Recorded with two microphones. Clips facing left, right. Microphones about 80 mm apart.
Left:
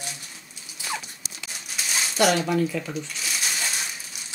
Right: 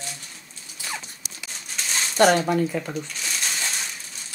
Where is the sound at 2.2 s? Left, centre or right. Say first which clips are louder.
Right 3 dB; right.